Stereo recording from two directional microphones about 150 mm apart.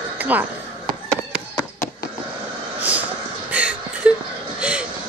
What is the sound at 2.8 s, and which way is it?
Vehicle, 10° right (ahead or behind).